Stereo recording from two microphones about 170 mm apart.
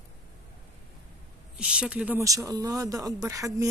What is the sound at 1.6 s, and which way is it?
Speech, 5° right (ahead or behind).